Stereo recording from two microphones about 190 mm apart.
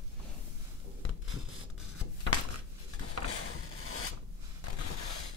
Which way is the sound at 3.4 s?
90° left.